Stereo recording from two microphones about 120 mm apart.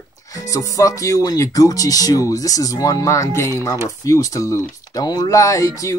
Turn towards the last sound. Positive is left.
turn(degrees=25)  # may be behind; listen again after turning